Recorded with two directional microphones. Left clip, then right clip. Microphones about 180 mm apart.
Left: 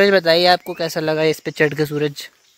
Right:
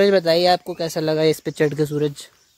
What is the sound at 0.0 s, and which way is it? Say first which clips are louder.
Speech: left 2 dB; 5° left (ahead or behind).